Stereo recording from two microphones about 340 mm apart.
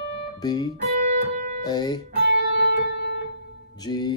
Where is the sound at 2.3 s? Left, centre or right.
Left.